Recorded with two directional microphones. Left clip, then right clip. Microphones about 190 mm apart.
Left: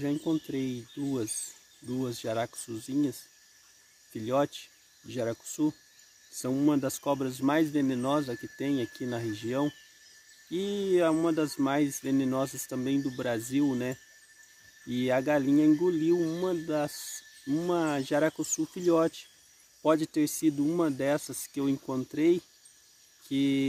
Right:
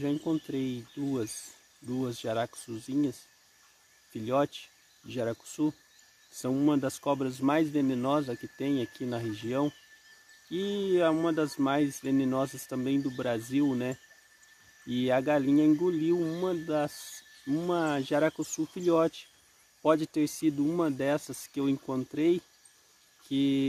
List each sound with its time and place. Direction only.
0.0 s speech: 10° right (ahead or behind)
1.3 s a sound: 10° left (ahead or behind)
2.0 s speech: 5° right (ahead or behind)